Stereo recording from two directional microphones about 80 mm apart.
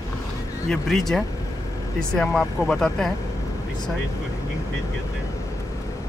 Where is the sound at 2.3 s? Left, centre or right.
Centre.